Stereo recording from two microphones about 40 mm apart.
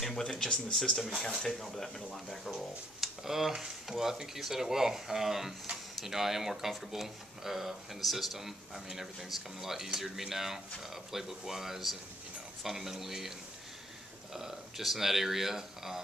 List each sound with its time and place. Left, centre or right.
0.1 s speech: centre
2.5 s speech: centre
14.3 s speech: centre